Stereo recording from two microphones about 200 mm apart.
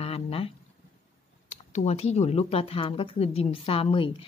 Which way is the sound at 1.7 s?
30° left (ahead or behind).